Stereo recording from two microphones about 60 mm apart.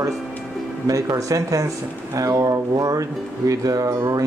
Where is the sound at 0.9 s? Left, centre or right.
Right.